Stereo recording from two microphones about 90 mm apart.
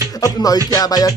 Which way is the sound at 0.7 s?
45° left (ahead or behind).